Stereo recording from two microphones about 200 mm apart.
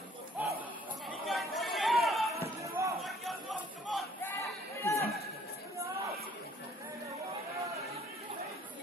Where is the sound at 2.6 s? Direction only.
15° right (ahead or behind).